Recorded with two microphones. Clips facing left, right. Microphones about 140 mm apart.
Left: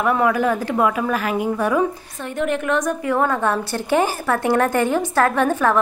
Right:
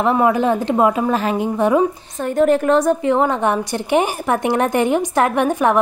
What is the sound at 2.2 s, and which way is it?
A woman's voice, 40° right (ahead or behind).